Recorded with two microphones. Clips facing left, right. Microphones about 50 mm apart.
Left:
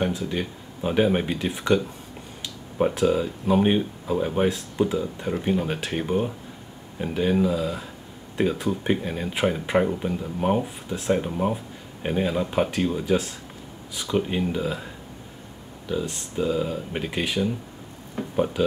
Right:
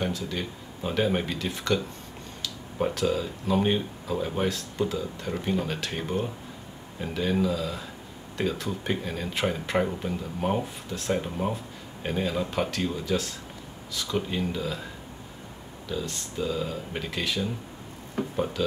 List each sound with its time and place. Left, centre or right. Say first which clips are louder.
0.0 s speech: left 4 dB; centre
15.9 s speech: left 4 dB; centre